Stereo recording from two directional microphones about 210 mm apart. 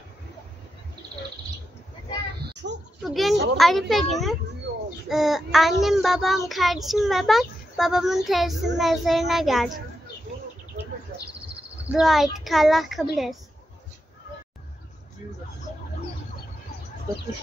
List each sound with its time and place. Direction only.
2.5 s a sound: 55° right (ahead or behind)
3.0 s a child's voice: centre (ahead or behind)
11.9 s a child's voice: centre (ahead or behind)